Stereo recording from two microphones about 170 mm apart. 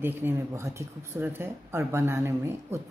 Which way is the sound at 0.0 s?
15° right (ahead or behind).